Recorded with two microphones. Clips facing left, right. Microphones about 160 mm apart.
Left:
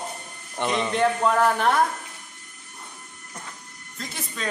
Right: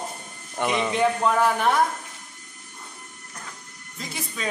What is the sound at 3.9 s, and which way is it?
Speech, 5° right (ahead or behind).